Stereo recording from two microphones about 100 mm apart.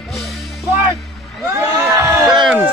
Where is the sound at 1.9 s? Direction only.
30° right (ahead or behind).